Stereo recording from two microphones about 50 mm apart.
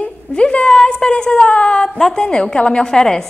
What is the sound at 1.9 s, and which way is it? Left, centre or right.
Speech, centre.